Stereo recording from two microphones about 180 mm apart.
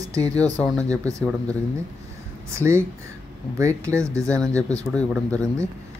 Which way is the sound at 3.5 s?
15° right (ahead or behind).